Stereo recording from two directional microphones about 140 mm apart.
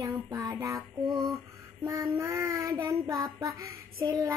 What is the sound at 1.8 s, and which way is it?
Child singing, 15° right (ahead or behind).